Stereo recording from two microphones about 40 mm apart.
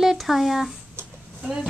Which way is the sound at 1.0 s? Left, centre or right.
Right.